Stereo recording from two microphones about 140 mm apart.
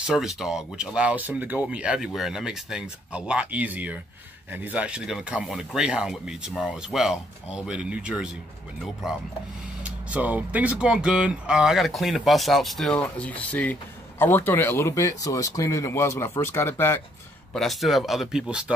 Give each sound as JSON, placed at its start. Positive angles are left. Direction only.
{"t": 0.0, "sound": "speech", "side_deg": -5}
{"t": 17.5, "sound": "speech", "side_deg": 0}